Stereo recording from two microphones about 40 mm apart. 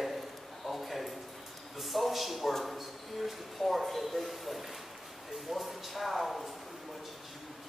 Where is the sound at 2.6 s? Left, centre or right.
Centre.